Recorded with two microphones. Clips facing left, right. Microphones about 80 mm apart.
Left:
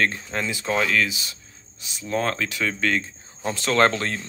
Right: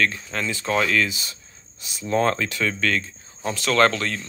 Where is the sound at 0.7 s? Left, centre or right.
Centre.